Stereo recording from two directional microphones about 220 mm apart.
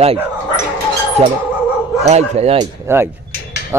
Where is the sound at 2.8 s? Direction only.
10° right (ahead or behind).